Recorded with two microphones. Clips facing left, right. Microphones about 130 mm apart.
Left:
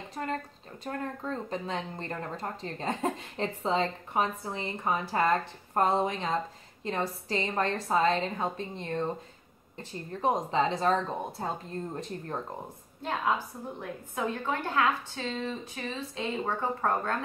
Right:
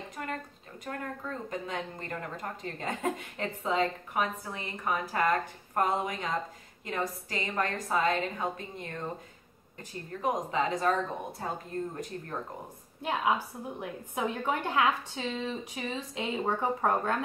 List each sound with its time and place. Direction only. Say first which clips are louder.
0.1 s speech: left 6 dB; 30° left (ahead or behind)
13.0 s a woman's voice: right 1 dB; 10° right (ahead or behind)